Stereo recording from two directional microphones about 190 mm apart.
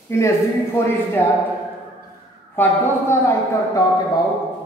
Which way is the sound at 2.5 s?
10° left (ahead or behind).